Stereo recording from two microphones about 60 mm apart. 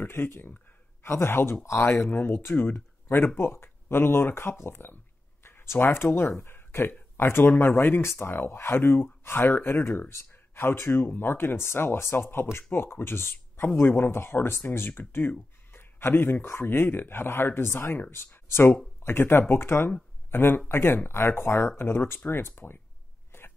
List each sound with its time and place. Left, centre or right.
0.0 s speech: left
2.0 s speech: left